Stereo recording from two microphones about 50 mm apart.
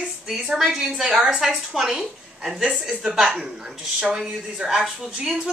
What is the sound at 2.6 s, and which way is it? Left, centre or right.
Speech, centre.